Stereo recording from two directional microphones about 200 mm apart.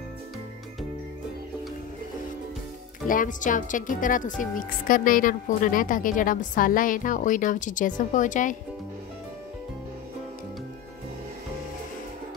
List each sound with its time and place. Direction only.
3.1 s a woman's voice: 40° left (ahead or behind)